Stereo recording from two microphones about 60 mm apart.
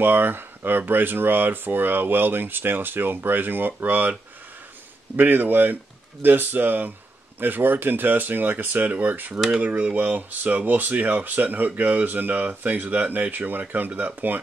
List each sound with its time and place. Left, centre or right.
0.0 s speech: right
5.1 s speech: right